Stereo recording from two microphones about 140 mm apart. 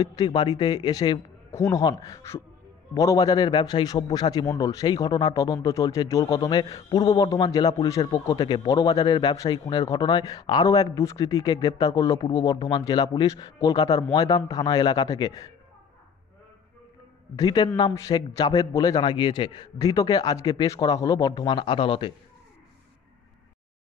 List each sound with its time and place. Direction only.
0.0 s speech: 25° left (ahead or behind)
17.4 s speech: 30° left (ahead or behind)